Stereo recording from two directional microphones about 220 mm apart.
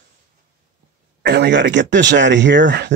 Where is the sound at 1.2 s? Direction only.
50° right (ahead or behind).